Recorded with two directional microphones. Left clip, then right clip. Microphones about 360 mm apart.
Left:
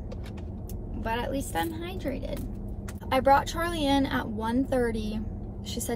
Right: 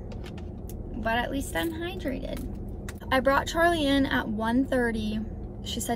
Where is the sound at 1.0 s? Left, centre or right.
Centre.